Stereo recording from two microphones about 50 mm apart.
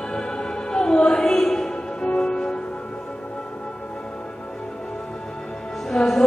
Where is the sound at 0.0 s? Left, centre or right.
Centre.